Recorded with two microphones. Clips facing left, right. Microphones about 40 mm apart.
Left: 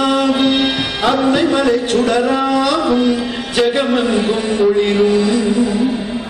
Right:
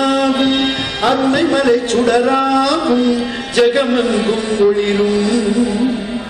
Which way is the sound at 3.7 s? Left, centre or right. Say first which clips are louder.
Right 1 dB; centre.